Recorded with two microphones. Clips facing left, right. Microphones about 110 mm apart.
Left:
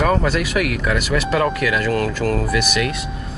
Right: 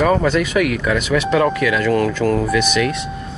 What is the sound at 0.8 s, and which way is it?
Speech, 5° left (ahead or behind).